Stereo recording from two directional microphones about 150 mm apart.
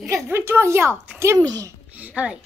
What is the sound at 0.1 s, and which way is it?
A woman's voice, 20° right (ahead or behind).